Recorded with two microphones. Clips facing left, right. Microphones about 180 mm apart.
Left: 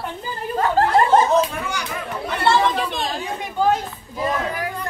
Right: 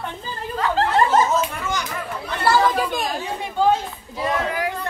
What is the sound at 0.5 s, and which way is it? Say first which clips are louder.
Chuckle: left 2 dB; 40° left (ahead or behind).